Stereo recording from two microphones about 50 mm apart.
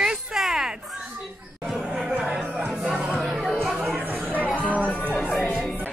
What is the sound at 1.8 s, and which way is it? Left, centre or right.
Chatter, centre.